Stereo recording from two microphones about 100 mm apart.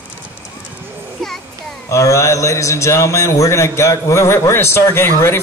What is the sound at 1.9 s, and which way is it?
A man's voice, 30° left (ahead or behind).